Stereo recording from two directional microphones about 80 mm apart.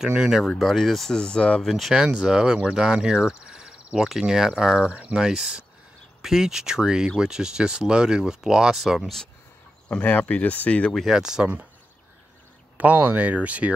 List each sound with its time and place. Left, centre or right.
0.0 s speech: centre
0.6 s speech: centre
1.7 s speech: centre
9.8 s speech: centre
11.0 s speech: centre
12.7 s speech: centre